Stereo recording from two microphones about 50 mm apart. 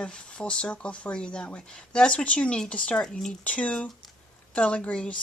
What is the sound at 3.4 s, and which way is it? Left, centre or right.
Speech, left.